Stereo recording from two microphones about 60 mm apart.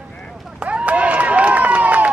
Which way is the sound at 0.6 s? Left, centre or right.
Right.